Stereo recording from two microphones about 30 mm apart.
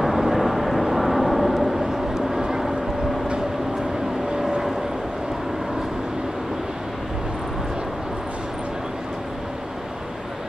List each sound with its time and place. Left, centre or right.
0.0 s vehicle: centre
2.1 s vehicle: centre